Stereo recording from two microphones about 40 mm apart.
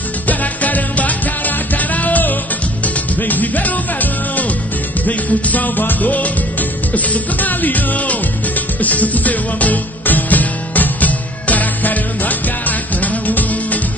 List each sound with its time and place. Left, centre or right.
0.3 s music: left